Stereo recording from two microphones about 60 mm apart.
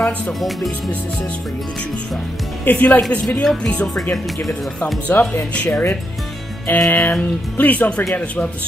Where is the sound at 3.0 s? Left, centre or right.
Centre.